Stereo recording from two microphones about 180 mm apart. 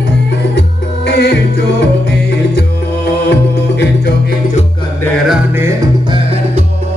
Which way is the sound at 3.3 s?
65° left (ahead or behind).